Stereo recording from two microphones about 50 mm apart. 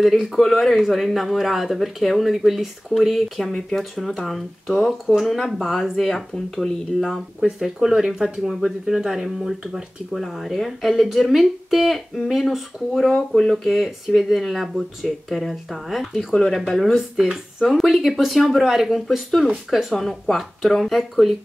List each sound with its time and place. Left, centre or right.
0.0 s speech: centre
7.3 s speech: centre
13.1 s speech: centre
13.7 s speech: centre
20.0 s speech: centre